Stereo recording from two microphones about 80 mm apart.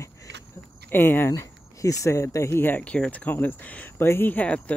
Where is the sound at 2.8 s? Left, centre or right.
Centre.